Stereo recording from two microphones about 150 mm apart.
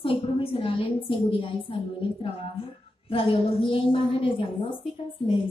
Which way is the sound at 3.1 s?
40° left (ahead or behind).